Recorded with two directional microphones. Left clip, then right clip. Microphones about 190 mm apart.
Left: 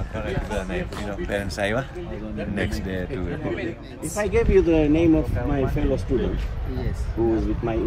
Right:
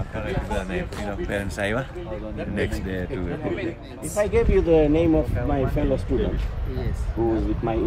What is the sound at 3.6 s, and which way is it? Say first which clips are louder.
Speech: even; 55° right (ahead or behind).